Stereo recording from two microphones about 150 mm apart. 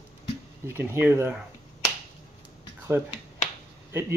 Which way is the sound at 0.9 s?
15° right (ahead or behind).